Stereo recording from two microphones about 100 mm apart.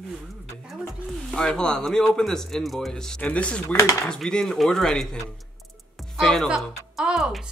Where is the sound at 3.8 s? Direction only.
30° left (ahead or behind).